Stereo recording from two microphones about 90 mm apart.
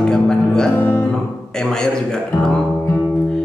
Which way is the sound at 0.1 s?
10° left (ahead or behind).